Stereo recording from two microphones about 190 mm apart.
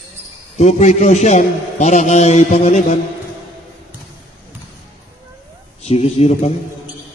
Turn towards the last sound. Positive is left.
turn(degrees=35)  # may be behind; listen again after turning